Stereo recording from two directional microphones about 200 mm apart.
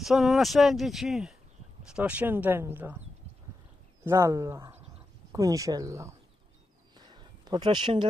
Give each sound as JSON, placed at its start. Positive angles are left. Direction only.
{"t": 0.0, "sound": "speech", "side_deg": 0}
{"t": 4.0, "sound": "speech", "side_deg": -15}
{"t": 7.0, "sound": "a sound", "side_deg": -20}